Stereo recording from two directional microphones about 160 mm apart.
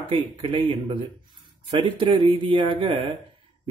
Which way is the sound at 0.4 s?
35° right (ahead or behind).